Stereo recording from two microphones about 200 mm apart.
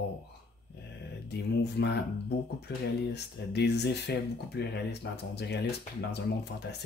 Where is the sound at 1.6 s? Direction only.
55° left (ahead or behind).